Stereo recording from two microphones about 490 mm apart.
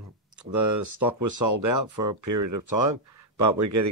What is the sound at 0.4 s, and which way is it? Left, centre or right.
Speech, right.